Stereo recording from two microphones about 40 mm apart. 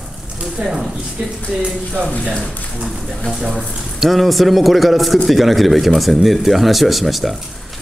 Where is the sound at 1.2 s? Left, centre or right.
Right.